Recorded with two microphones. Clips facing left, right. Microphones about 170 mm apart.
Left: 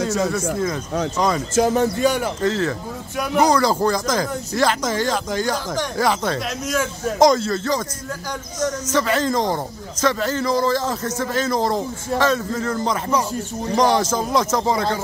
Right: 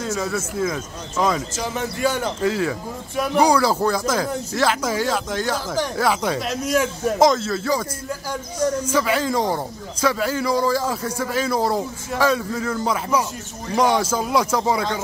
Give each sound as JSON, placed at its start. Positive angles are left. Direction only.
{"t": 1.1, "sound": "speech", "side_deg": 0}
{"t": 1.5, "sound": "speech", "side_deg": 50}
{"t": 2.0, "sound": "speech", "side_deg": 15}
{"t": 2.4, "sound": "a man's voice", "side_deg": -10}
{"t": 8.8, "sound": "a man's voice", "side_deg": -10}